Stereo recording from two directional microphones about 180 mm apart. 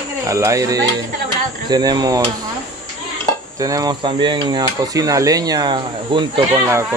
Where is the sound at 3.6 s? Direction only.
20° right (ahead or behind).